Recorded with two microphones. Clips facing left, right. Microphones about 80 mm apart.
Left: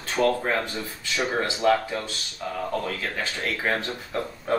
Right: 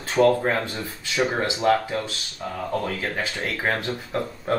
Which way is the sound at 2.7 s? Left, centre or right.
Right.